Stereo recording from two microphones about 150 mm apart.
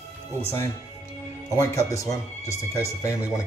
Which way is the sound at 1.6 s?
20° left (ahead or behind).